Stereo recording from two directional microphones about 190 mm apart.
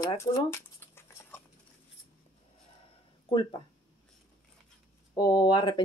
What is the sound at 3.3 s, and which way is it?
Speech, 25° left (ahead or behind).